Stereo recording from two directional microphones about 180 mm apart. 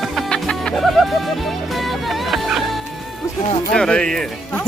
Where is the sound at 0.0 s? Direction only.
Centre (ahead or behind).